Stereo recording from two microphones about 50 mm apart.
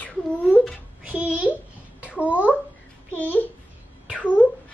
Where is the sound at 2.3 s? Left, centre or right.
Right.